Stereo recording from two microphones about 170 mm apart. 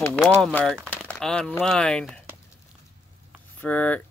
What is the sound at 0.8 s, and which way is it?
Crumpling, 5° left (ahead or behind).